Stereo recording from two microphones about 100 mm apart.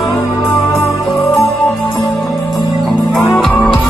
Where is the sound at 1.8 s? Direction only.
45° left (ahead or behind).